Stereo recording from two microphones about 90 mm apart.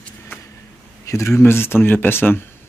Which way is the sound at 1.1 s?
30° left (ahead or behind).